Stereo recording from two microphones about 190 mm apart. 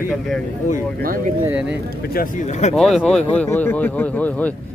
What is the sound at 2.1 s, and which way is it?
Speech, 40° left (ahead or behind).